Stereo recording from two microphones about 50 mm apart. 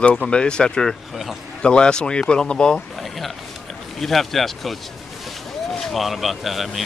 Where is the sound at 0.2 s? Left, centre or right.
Centre.